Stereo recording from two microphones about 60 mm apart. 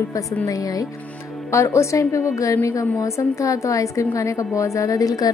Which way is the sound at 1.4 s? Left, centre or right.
Left.